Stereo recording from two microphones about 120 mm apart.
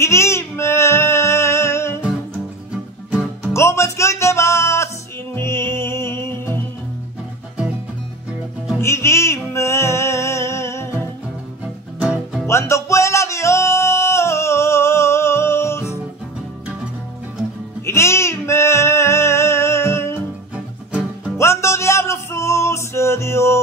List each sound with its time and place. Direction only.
0.0 s music: 25° left (ahead or behind)
2.7 s music: 10° right (ahead or behind)
3.5 s music: 20° left (ahead or behind)
8.8 s music: 20° left (ahead or behind)
12.0 s music: 5° right (ahead or behind)
12.4 s music: 25° left (ahead or behind)
17.8 s a sound: 20° left (ahead or behind)
20.5 s music: 10° right (ahead or behind)
21.4 s music: 25° left (ahead or behind)